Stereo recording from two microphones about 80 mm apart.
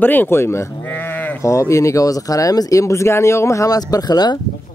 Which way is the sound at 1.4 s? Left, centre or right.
Left.